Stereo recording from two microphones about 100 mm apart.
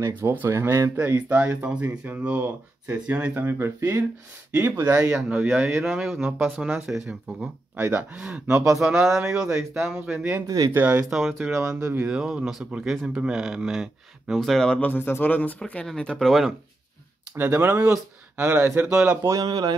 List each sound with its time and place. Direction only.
0.0 s speech: 25° right (ahead or behind)
0.9 s speech: 15° right (ahead or behind)
3.4 s speech: 25° right (ahead or behind)
5.8 s speech: 5° right (ahead or behind)
6.4 s speech: 15° right (ahead or behind)
10.4 s speech: 40° right (ahead or behind)
10.7 s speech: 15° right (ahead or behind); by 15.5 s 20° left (ahead or behind)
15.6 s speech: 5° left (ahead or behind)
17.4 s speech: 20° right (ahead or behind)
19.4 s speech: 45° right (ahead or behind)